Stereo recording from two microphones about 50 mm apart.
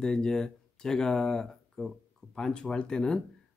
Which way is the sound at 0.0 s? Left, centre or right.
Centre.